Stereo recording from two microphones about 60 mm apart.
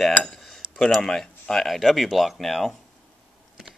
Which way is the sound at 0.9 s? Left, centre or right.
Centre.